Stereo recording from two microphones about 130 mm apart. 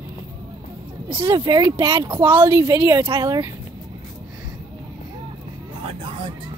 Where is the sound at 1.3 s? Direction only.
35° right (ahead or behind).